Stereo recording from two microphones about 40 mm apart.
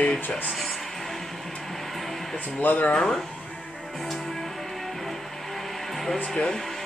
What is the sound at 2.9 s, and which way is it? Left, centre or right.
Speech, centre.